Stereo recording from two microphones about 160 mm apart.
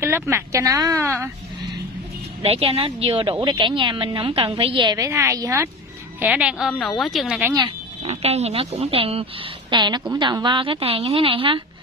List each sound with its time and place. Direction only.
0.0 s a woman's voice: 15° right (ahead or behind)
2.4 s a woman's voice: 35° right (ahead or behind); by 7.5 s 5° right (ahead or behind)
7.5 s a woman's voice: 35° right (ahead or behind)